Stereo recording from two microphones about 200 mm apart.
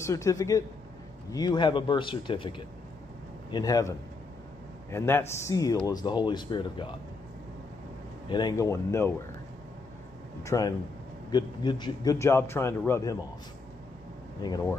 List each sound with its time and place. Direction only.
0.0 s a man's voice: 15° left (ahead or behind)
3.5 s a man's voice: 15° left (ahead or behind)
4.9 s a man's voice: 10° left (ahead or behind)
8.3 s a man's voice: 20° left (ahead or behind)
10.4 s a man's voice: 15° left (ahead or behind)
14.4 s a man's voice: 20° left (ahead or behind)